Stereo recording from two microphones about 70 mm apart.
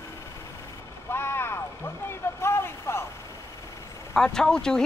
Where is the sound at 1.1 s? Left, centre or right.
Left.